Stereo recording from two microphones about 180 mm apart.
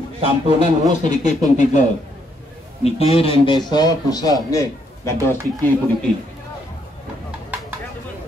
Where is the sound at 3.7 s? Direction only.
20° left (ahead or behind).